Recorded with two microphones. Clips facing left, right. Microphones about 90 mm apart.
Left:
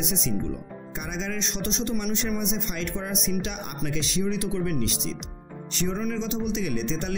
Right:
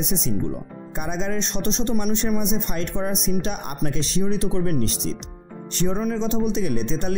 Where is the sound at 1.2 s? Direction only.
45° right (ahead or behind).